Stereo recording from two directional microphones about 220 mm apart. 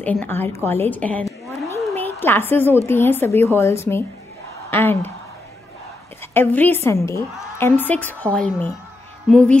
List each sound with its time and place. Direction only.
0.0 s a woman's voice: 5° left (ahead or behind)
1.9 s a sound: 10° left (ahead or behind)
2.9 s a woman's voice: 10° left (ahead or behind)
6.3 s a woman's voice: 10° left (ahead or behind)